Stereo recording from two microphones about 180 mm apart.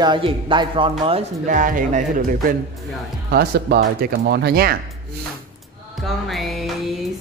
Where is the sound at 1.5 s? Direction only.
45° right (ahead or behind).